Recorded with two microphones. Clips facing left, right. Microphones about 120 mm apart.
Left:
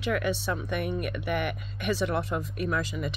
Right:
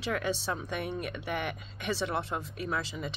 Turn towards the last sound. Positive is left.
turn(degrees=-25)  # may be behind; listen again after turning